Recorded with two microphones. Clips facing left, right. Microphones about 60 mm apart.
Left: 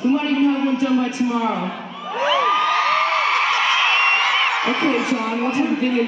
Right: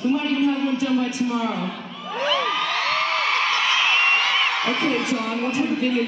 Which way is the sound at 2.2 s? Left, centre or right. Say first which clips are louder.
Left 6 dB; centre.